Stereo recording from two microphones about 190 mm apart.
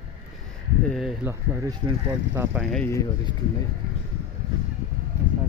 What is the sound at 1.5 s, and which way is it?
Speech, 15° right (ahead or behind).